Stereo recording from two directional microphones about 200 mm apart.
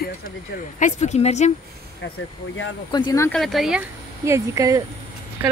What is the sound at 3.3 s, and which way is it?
Speech, centre (ahead or behind).